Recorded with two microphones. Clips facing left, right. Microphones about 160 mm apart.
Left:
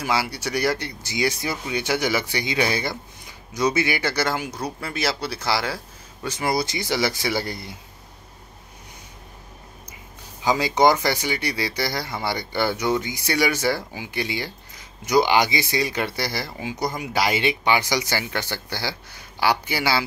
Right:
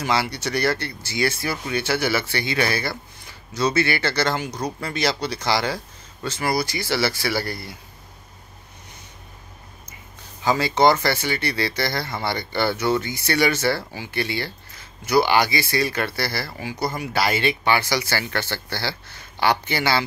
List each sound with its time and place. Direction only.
0.0 s speech: 5° left (ahead or behind)
6.2 s speech: 20° left (ahead or behind)
10.4 s speech: 15° left (ahead or behind)